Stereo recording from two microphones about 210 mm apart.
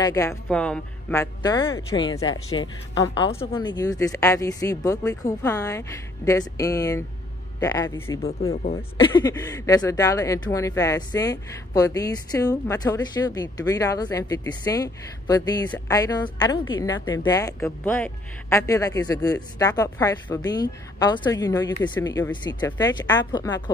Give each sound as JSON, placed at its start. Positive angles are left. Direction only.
{"t": 0.0, "sound": "speech", "side_deg": 15}
{"t": 9.1, "sound": "a woman's voice", "side_deg": 15}